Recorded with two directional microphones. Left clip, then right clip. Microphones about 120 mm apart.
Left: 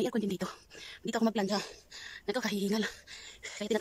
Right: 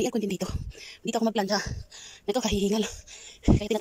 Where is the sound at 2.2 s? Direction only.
10° right (ahead or behind).